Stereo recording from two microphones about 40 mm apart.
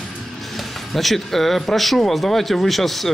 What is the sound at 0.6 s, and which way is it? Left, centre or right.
Speech, centre.